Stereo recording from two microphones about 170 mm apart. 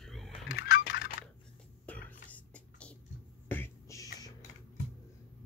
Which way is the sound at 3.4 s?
10° left (ahead or behind).